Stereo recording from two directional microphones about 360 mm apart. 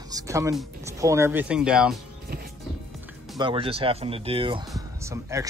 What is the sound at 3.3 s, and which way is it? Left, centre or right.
Speech, centre.